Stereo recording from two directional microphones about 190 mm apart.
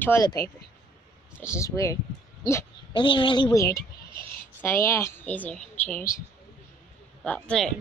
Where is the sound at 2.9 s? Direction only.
25° left (ahead or behind); by 5.8 s 5° left (ahead or behind).